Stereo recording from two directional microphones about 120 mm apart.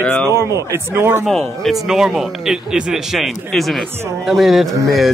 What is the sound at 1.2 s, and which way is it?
Speech, centre (ahead or behind).